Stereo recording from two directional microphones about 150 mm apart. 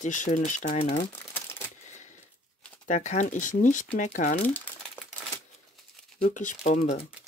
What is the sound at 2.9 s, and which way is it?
Speech, 50° left (ahead or behind).